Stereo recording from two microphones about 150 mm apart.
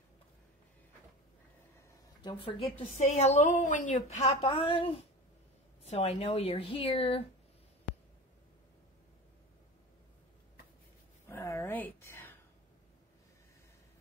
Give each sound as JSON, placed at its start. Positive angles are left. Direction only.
{"t": 2.2, "sound": "speech", "side_deg": 35}
{"t": 3.0, "sound": "a woman's voice", "side_deg": 50}
{"t": 11.2, "sound": "a sound", "side_deg": 20}